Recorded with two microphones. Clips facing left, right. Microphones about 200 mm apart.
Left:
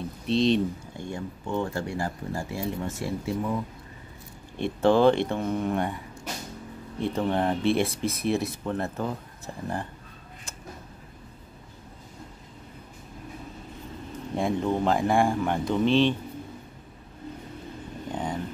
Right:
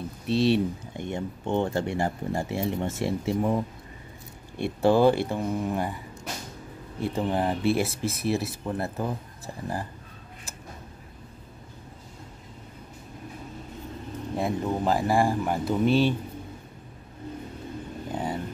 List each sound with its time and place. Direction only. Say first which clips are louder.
0.3 s speech: even; 5° right (ahead or behind)
0.9 s speech: right 3 dB; 20° right (ahead or behind)
4.6 s speech: even; 10° right (ahead or behind)
14.3 s speech: left 2 dB; 5° right (ahead or behind)
18.1 s vehicle: right 1 dB; 5° right (ahead or behind)